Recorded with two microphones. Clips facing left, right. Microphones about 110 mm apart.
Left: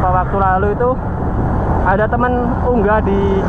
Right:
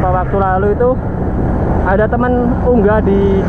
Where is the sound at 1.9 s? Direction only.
35° left (ahead or behind).